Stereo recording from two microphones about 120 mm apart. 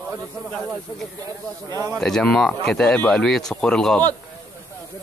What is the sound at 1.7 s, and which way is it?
Speech, 30° right (ahead or behind).